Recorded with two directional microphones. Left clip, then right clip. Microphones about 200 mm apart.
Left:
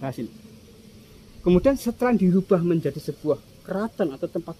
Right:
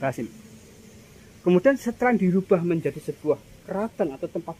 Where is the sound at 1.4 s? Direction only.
45° left (ahead or behind).